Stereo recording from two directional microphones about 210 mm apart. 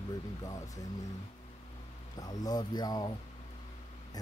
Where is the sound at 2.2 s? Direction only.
20° left (ahead or behind).